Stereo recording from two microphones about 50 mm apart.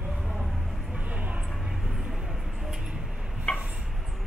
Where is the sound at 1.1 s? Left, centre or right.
Right.